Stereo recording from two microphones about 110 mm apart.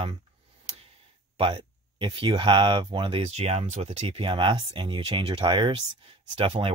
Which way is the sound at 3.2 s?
80° right.